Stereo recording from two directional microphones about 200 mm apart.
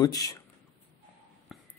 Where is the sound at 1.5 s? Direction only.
Centre (ahead or behind).